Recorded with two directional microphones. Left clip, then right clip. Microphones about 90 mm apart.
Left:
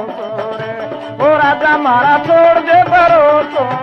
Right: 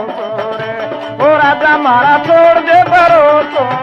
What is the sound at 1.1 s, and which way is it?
Music, 40° right (ahead or behind).